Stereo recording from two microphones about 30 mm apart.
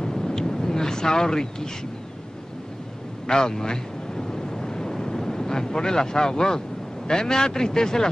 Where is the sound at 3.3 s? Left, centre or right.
Left.